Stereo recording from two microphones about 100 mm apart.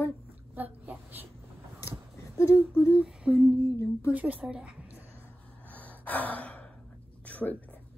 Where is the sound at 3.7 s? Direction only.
30° left (ahead or behind).